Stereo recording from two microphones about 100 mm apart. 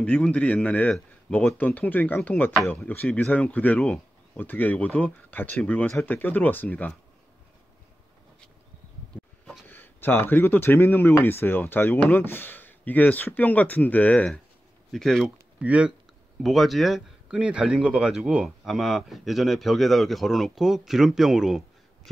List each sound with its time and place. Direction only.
0.0 s speech: 15° left (ahead or behind)
9.7 s speech: 20° left (ahead or behind); by 15.3 s 5° left (ahead or behind)
15.6 s speech: 15° right (ahead or behind)
16.3 s speech: centre (ahead or behind)